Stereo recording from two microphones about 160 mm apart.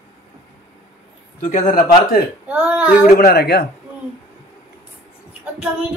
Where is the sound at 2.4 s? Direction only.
10° right (ahead or behind).